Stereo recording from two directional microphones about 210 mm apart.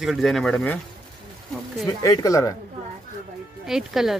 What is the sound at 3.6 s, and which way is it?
Speech, centre (ahead or behind).